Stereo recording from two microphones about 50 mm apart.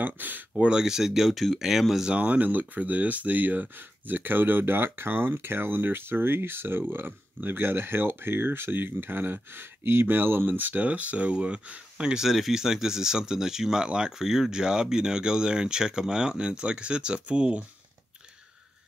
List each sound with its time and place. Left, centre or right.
0.0 s speech: right
0.6 s speech: centre
2.0 s speech: right
12.3 s speech: centre; by 17.6 s right